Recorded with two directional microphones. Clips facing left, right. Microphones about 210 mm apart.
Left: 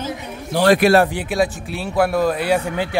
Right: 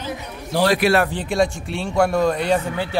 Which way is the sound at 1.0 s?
10° left (ahead or behind).